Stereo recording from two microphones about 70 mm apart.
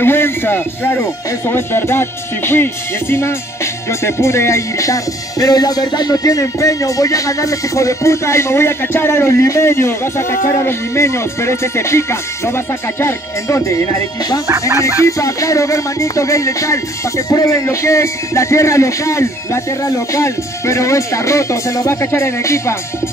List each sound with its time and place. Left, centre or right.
0.0 s speech: left
1.5 s music: left